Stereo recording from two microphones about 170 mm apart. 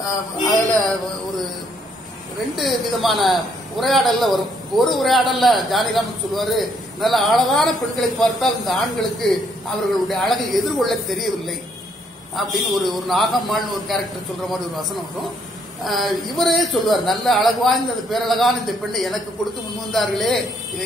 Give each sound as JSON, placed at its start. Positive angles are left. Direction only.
{"t": 2.5, "sound": "a man's voice", "side_deg": 0}